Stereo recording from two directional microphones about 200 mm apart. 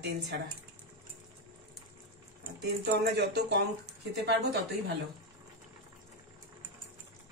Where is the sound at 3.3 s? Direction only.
60° right (ahead or behind).